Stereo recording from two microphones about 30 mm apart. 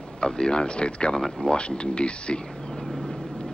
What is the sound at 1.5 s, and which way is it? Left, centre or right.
Speech, left.